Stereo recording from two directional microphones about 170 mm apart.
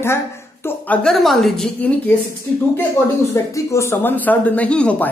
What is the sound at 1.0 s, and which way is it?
A woman's voice, centre (ahead or behind).